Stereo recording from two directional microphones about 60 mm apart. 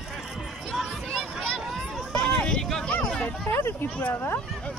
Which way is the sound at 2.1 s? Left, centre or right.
Centre.